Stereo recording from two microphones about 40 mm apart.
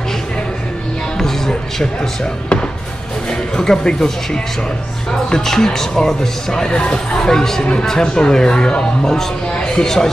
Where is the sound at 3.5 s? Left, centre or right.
Centre.